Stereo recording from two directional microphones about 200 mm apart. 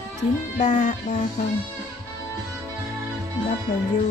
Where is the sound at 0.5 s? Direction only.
40° left (ahead or behind).